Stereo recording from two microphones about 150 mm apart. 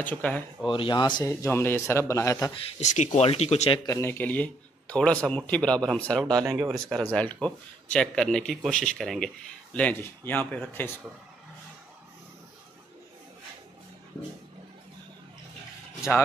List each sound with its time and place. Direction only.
0.0 s a man's voice: 10° left (ahead or behind)
0.7 s speech: 35° left (ahead or behind)
1.4 s a man's voice: 15° left (ahead or behind)
2.8 s speech: 55° left (ahead or behind)
3.8 s a man's voice: 20° left (ahead or behind)